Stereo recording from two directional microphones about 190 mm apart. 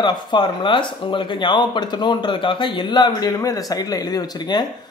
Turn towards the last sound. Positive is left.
turn(degrees=20)  # may be behind; listen again after turning